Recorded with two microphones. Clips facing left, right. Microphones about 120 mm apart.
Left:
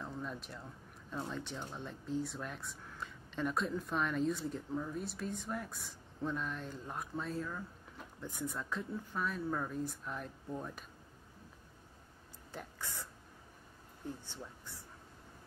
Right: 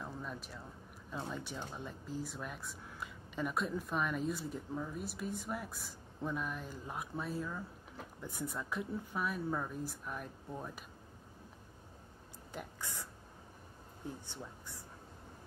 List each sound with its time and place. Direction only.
0.0 s a sound: 5° right (ahead or behind)
1.3 s speech: 10° right (ahead or behind)
12.5 s speech: 15° right (ahead or behind)